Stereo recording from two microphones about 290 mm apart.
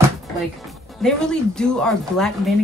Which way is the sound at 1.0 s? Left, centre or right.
Centre.